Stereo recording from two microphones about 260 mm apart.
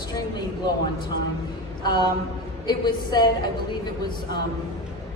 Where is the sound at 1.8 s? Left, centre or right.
Centre.